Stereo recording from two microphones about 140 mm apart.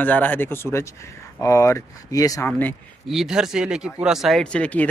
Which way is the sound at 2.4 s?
10° left (ahead or behind).